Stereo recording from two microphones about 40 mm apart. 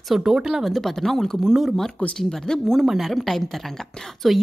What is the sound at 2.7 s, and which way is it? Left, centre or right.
Speech, centre.